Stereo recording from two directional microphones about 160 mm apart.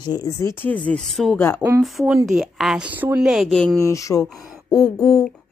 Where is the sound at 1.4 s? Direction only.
15° left (ahead or behind).